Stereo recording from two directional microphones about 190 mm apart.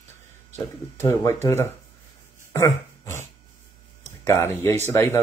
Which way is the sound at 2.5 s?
15° left (ahead or behind).